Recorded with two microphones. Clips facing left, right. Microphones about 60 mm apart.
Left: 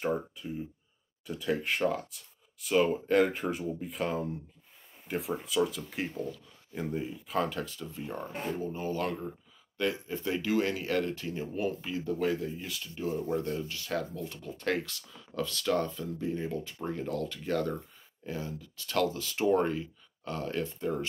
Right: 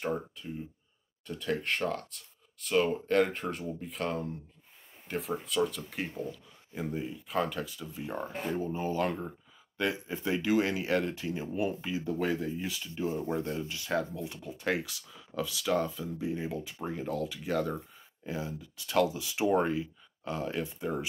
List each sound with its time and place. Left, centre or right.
0.0 s speech: centre
8.3 s speech: centre
8.5 s speech: right